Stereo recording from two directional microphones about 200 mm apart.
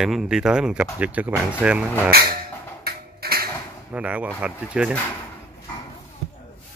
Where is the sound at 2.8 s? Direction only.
50° right (ahead or behind).